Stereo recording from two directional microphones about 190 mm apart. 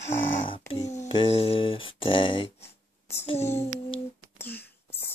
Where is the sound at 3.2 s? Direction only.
35° left (ahead or behind).